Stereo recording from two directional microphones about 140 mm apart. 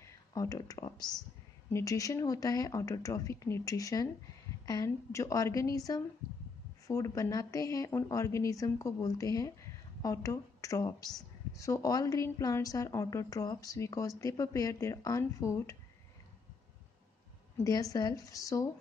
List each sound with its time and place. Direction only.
0.0 s a woman's voice: 25° left (ahead or behind)
17.6 s a woman's voice: 25° left (ahead or behind)